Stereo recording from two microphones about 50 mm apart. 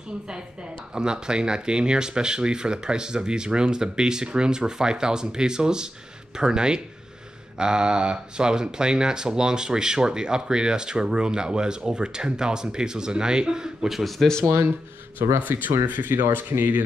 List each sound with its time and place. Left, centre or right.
0.9 s speech: centre
14.4 s speech: right
15.2 s speech: right
15.9 s speech: right